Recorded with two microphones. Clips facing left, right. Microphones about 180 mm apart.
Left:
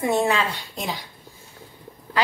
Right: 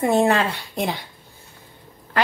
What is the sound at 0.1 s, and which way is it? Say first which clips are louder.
Speech: right 3 dB; 60° right (ahead or behind).